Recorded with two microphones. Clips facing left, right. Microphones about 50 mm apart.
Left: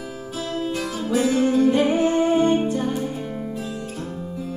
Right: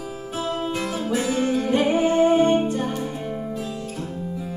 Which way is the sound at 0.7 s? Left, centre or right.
Right.